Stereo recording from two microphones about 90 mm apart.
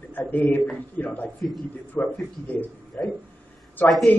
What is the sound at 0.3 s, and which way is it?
Speech, 20° left (ahead or behind).